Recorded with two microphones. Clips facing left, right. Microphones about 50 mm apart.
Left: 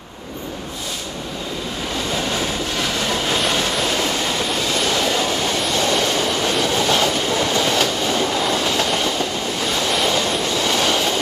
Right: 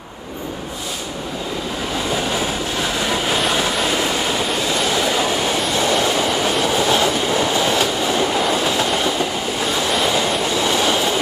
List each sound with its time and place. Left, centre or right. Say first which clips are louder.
4.8 s train: right 1 dB; centre